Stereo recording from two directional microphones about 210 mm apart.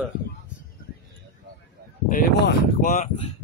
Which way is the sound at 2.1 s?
40° left (ahead or behind).